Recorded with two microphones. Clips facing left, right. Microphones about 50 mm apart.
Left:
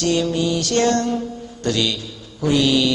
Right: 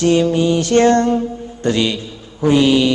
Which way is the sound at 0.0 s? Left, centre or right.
Right.